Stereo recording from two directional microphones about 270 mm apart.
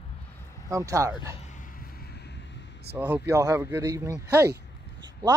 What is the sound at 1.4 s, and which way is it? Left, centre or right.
Vehicle, left.